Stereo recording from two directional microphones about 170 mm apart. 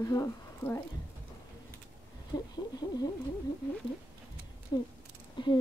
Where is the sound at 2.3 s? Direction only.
25° left (ahead or behind).